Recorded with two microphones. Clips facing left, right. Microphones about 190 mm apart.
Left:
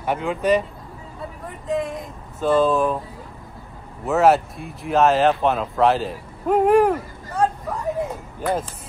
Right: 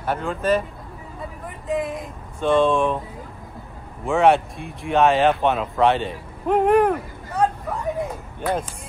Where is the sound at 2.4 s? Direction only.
5° left (ahead or behind).